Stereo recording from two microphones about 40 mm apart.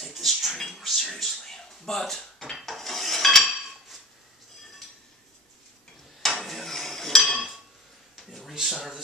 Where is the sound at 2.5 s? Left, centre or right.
Centre.